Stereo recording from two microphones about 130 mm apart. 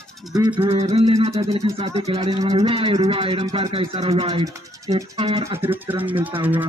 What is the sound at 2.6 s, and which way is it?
Speech, 45° right (ahead or behind).